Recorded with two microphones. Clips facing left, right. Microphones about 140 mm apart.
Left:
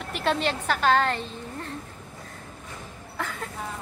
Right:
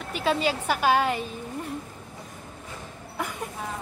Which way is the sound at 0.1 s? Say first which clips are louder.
Right 1 dB; 5° right (ahead or behind).